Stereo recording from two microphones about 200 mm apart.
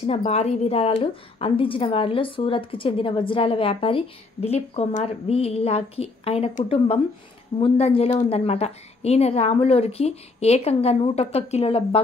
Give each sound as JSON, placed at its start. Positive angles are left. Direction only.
{"t": 0.0, "sound": "a woman's voice", "side_deg": 30}